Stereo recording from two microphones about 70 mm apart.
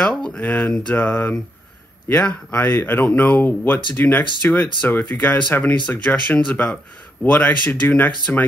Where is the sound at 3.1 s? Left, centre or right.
Centre.